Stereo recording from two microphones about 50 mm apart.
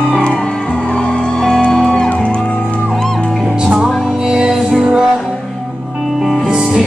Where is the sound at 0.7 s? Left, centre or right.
Left.